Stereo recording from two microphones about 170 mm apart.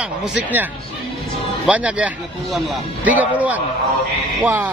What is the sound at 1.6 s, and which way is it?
A man's voice, 10° right (ahead or behind).